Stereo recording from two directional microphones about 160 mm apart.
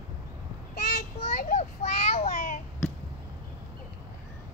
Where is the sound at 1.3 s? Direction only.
55° left (ahead or behind).